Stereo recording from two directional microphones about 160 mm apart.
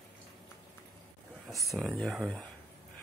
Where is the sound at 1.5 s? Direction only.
Centre (ahead or behind).